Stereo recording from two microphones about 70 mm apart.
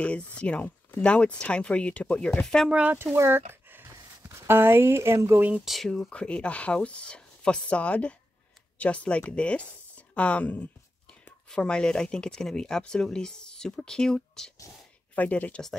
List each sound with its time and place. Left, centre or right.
0.0 s speech: centre
2.7 s speech: right
3.2 s speech: right
5.9 s speech: centre
9.3 s a sound: centre
11.4 s speech: centre
15.1 s speech: left